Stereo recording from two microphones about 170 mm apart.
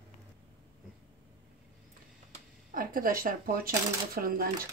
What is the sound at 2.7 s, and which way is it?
Speech, 55° right (ahead or behind).